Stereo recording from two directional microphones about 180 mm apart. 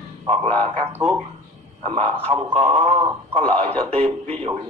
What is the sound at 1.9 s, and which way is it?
Speech, 35° right (ahead or behind).